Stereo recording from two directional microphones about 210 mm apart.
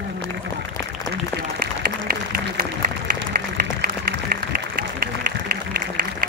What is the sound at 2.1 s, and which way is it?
Applause, 40° right (ahead or behind).